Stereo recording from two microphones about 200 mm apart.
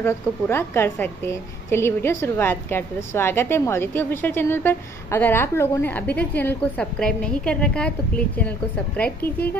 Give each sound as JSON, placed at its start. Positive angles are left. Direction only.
{"t": 0.0, "sound": "a woman's voice", "side_deg": 10}